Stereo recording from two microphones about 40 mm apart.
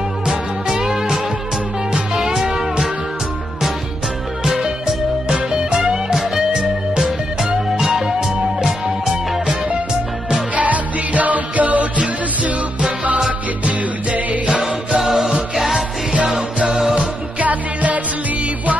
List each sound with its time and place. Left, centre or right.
0.3 s music: centre
4.5 s music: centre
7.8 s music: centre
10.5 s music: right
13.7 s music: right
14.6 s music: centre
16.3 s music: centre
16.9 s music: right